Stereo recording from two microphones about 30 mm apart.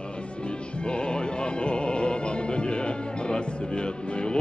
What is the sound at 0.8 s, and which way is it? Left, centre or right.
Music, left.